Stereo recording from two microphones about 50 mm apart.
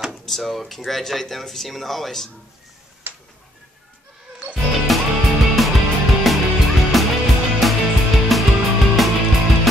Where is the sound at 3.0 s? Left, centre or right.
Right.